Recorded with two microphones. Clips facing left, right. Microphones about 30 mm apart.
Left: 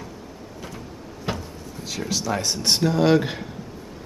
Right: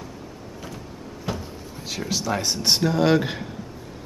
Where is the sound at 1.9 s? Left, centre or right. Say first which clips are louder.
Even; centre.